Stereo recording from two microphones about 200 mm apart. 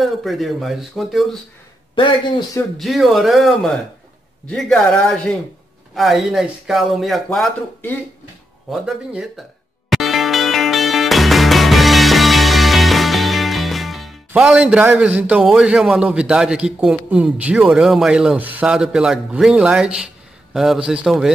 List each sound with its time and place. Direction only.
0.0 s a man's voice: centre (ahead or behind)
2.0 s a man's voice: 25° left (ahead or behind)
2.8 s a man's voice: centre (ahead or behind)
9.8 s music: centre (ahead or behind)
14.3 s a man's voice: 5° right (ahead or behind)